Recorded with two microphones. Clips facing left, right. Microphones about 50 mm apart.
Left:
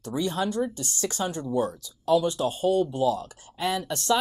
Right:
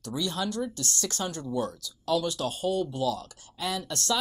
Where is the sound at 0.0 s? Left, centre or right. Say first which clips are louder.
Left 4 dB; left.